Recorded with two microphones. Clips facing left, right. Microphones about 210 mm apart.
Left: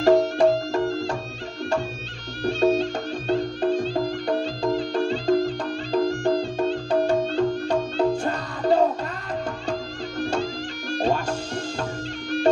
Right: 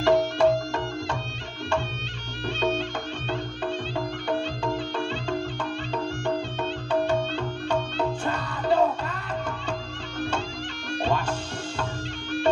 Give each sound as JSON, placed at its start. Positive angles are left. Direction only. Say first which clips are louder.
{"t": 0.0, "sound": "music", "louder": "left 3 dB", "side_deg": 35}
{"t": 2.4, "sound": "music", "louder": "left 7 dB", "side_deg": 40}